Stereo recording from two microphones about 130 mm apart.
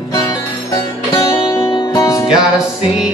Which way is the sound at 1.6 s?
40° left (ahead or behind).